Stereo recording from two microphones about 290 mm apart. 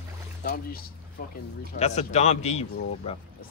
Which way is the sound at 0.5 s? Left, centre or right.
Left.